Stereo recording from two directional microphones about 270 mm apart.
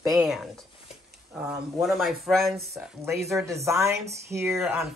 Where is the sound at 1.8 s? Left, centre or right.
Centre.